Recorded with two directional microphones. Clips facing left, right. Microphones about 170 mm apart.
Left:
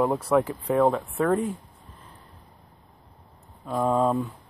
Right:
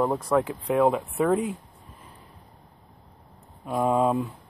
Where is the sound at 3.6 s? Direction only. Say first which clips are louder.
Even; 10° right (ahead or behind).